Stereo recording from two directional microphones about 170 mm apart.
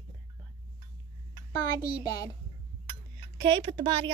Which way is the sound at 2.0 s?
20° left (ahead or behind).